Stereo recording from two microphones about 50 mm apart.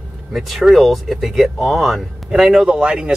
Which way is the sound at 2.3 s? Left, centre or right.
Centre.